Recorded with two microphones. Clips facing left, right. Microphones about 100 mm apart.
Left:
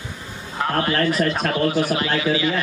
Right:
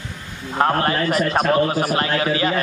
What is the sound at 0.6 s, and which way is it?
A man's voice, 45° right (ahead or behind).